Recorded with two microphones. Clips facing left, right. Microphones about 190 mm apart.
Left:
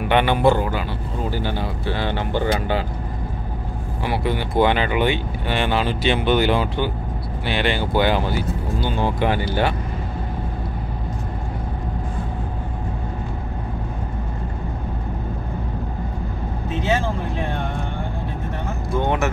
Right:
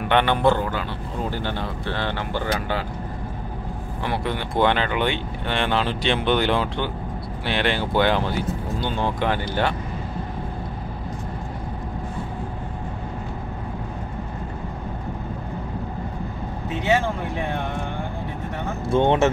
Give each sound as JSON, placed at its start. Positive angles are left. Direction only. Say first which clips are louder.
{"t": 0.0, "sound": "speech", "louder": "left 2 dB", "side_deg": 10}
{"t": 4.0, "sound": "speech", "louder": "left 3 dB", "side_deg": 5}
{"t": 18.9, "sound": "speech", "louder": "right 4 dB", "side_deg": -25}